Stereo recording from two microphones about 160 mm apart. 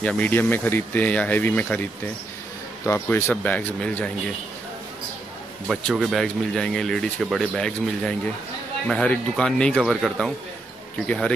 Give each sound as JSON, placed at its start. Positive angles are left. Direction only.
{"t": 0.0, "sound": "speech", "side_deg": 10}
{"t": 5.7, "sound": "speech", "side_deg": 0}